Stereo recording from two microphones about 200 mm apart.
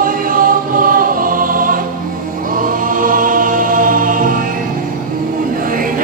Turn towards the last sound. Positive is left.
turn(degrees=-45)  # may be behind; listen again after turning